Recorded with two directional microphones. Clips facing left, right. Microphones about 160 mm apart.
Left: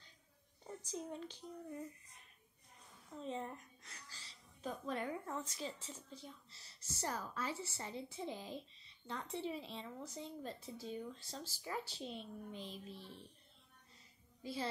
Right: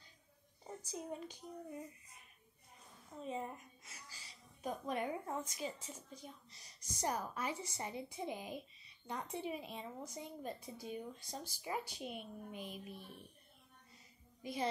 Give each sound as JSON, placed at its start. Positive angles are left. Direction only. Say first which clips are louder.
{"t": 0.8, "sound": "speech", "louder": "even", "side_deg": -10}
{"t": 14.4, "sound": "speech", "louder": "right 3 dB", "side_deg": -15}